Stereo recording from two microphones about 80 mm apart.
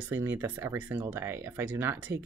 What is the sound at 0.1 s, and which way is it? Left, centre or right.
Speech, right.